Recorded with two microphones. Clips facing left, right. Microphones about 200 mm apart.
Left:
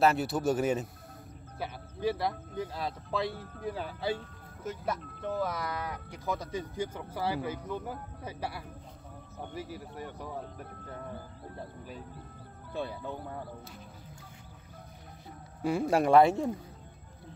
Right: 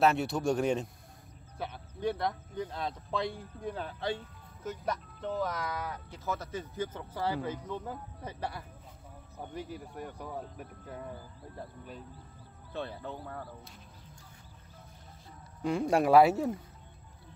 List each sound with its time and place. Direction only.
0.0 s speech: centre (ahead or behind)
12.7 s speech: 15° left (ahead or behind)
15.6 s speech: 5° left (ahead or behind)